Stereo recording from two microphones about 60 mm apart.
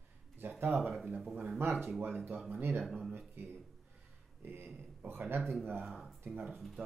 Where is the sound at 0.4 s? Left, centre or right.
Right.